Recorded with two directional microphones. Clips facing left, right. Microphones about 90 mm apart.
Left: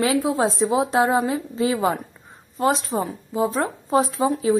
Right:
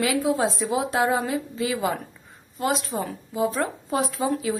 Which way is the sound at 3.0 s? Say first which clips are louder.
Left 2 dB; 25° left (ahead or behind).